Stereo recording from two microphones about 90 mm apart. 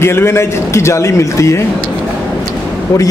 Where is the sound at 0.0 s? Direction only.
30° left (ahead or behind).